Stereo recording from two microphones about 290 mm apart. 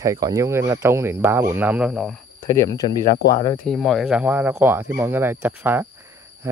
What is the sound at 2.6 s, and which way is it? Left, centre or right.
Speech, centre.